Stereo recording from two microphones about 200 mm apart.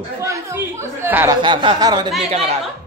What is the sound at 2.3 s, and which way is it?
Speech, 30° right (ahead or behind).